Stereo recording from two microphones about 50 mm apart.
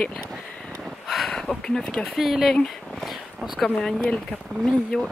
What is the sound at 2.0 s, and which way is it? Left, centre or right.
Speech, centre.